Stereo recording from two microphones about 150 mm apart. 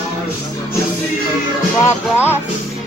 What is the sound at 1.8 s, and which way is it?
Music, 15° left (ahead or behind).